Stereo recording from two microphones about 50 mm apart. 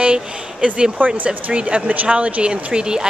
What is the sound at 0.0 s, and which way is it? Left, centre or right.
Speech, centre.